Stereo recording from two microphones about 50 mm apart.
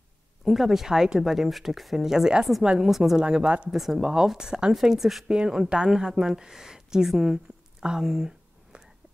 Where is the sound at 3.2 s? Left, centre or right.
Right.